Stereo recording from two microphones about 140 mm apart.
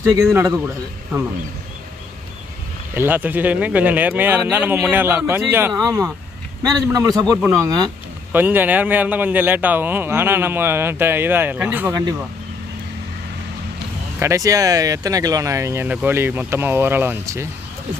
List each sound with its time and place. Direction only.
0.0 s speech: 25° right (ahead or behind)
3.0 s a man's voice: 15° right (ahead or behind)
8.3 s a man's voice: 15° right (ahead or behind)
14.2 s speech: 25° right (ahead or behind)